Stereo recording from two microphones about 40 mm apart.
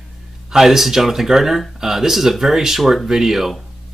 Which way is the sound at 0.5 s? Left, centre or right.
Centre.